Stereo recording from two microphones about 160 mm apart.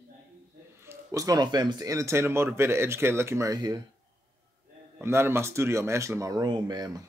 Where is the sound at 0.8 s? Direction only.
20° right (ahead or behind).